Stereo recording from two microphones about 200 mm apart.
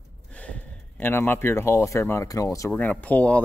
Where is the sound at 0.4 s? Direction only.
10° left (ahead or behind).